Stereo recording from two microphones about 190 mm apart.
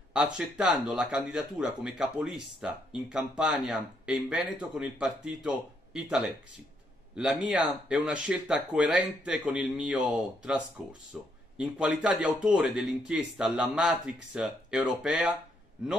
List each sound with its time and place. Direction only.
0.1 s speech: 5° right (ahead or behind)